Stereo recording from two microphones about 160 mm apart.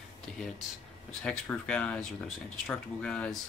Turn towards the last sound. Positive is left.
turn(degrees=5)  # may be behind; listen again after turning